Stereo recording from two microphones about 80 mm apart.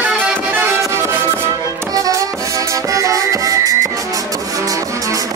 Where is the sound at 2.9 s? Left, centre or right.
Right.